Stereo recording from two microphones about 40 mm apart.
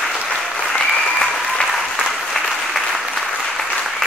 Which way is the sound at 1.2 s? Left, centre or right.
Centre.